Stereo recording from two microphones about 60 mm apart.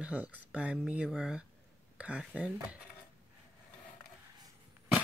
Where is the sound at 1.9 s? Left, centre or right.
Right.